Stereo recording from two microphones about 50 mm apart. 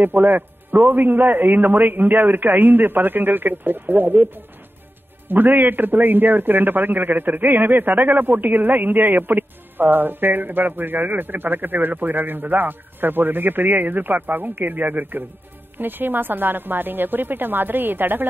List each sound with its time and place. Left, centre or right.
0.0 s a man's voice: right